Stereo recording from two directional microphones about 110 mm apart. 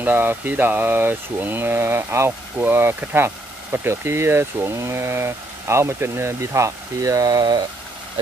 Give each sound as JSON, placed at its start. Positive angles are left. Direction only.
{"t": 0.0, "sound": "speech", "side_deg": -20}